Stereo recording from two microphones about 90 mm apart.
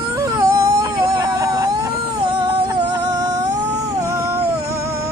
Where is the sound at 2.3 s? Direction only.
55° right (ahead or behind).